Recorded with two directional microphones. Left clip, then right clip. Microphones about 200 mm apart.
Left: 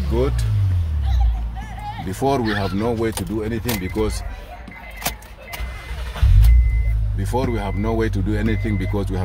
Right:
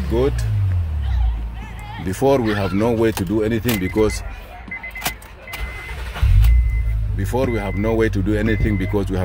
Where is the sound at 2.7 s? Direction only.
35° right (ahead or behind).